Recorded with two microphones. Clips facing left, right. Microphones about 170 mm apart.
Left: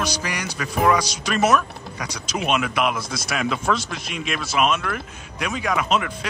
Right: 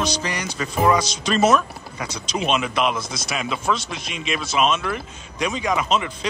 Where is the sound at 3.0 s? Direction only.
25° right (ahead or behind).